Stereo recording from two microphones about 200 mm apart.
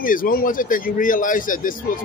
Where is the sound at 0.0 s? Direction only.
45° left (ahead or behind).